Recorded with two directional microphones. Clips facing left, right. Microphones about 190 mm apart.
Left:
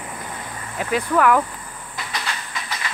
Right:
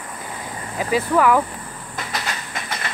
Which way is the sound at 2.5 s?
50° right (ahead or behind).